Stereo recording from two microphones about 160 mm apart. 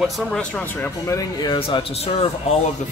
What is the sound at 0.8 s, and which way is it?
Speech, 20° left (ahead or behind).